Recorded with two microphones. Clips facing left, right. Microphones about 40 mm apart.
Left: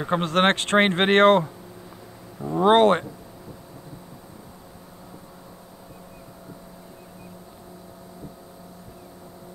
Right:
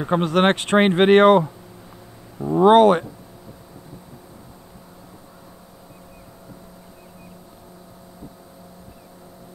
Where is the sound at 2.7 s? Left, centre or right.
Left.